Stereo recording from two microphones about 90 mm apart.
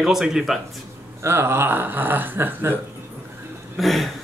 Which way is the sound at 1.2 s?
30° right (ahead or behind).